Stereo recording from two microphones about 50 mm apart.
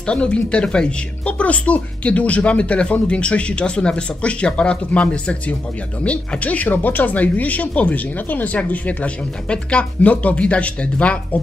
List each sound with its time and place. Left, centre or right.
0.0 s speech: left